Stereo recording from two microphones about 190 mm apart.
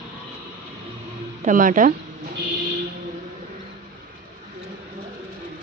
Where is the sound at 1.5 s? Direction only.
45° right (ahead or behind).